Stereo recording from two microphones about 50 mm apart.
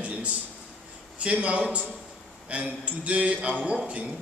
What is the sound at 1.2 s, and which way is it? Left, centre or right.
A man's voice, right.